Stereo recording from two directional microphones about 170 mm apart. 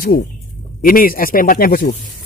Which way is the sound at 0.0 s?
55° left (ahead or behind).